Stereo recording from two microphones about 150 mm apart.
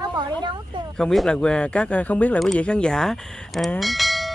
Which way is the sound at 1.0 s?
5° left (ahead or behind).